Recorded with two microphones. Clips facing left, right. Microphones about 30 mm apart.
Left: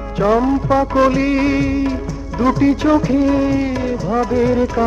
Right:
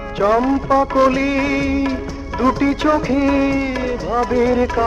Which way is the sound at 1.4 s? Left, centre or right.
Right.